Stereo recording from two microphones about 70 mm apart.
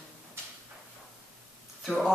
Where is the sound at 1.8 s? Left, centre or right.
Centre.